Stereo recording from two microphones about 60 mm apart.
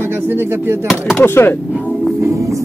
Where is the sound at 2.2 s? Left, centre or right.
Right.